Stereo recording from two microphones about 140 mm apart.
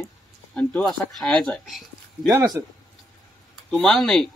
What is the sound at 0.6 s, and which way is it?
Speech, 5° left (ahead or behind).